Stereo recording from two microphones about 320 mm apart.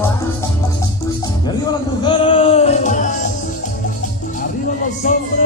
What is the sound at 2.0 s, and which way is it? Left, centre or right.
Music, centre.